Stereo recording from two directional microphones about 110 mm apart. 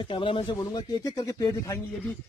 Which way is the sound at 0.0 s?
50° left (ahead or behind).